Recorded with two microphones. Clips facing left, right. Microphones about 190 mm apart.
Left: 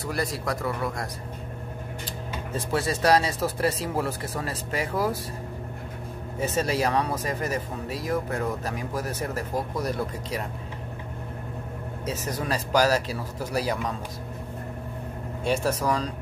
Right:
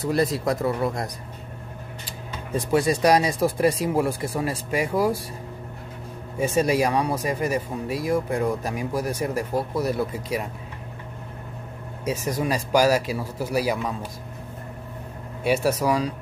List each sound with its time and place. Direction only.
0.0 s speech: 20° right (ahead or behind)
2.0 s speech: 15° right (ahead or behind)
6.4 s speech: 10° right (ahead or behind)
12.0 s speech: 10° right (ahead or behind)
15.4 s speech: 10° right (ahead or behind)